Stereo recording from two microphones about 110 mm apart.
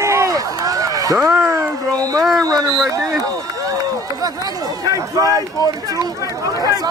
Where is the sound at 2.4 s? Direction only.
35° right (ahead or behind).